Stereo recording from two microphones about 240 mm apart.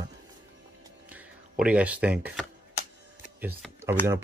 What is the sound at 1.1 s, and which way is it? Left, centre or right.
Speech, centre.